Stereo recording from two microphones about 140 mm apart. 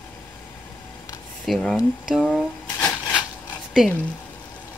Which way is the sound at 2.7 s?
10° left (ahead or behind).